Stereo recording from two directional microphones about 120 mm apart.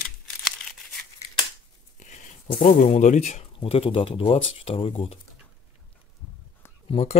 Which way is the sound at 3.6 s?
50° left (ahead or behind).